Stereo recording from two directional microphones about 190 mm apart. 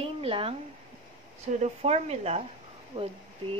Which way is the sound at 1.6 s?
35° right (ahead or behind).